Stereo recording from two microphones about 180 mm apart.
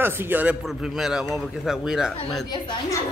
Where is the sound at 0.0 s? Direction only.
10° right (ahead or behind).